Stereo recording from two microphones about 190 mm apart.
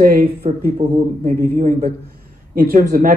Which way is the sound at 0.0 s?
50° right (ahead or behind).